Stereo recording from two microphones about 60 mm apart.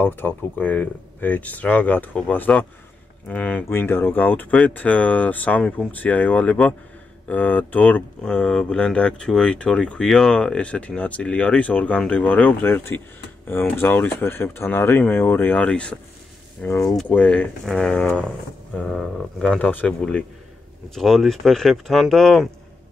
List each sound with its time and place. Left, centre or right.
0.0 s speech: left
3.6 s speech: left
8.2 s speech: centre; by 12.8 s left
13.5 s speech: left
15.5 s speech: centre
17.6 s speech: centre
19.6 s speech: left
20.0 s speech: centre
20.9 s speech: centre